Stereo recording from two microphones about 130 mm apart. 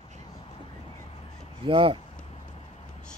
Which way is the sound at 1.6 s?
40° right (ahead or behind).